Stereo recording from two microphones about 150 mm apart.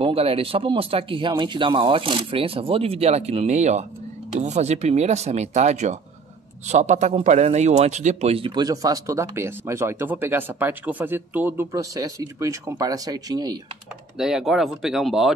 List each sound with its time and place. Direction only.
0.0 s a man's voice: 40° right (ahead or behind)
14.1 s speech: 5° right (ahead or behind)